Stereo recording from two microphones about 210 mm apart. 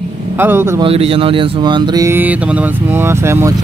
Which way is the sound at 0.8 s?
25° right (ahead or behind).